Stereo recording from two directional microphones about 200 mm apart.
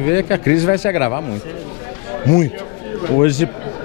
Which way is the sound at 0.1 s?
15° left (ahead or behind).